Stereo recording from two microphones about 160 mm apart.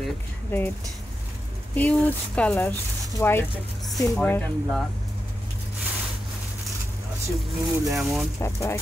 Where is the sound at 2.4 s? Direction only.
10° left (ahead or behind).